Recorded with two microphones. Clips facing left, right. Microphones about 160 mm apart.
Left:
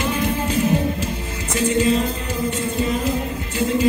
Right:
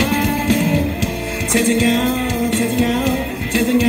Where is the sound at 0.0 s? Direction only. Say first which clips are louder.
Right 4 dB; 90° right.